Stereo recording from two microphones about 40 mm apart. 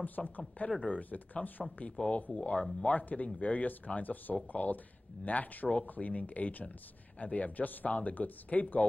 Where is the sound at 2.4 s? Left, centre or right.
Left.